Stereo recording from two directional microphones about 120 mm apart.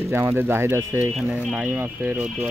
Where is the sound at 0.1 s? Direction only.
15° right (ahead or behind).